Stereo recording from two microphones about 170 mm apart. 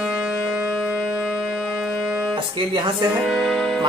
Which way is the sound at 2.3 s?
25° right (ahead or behind).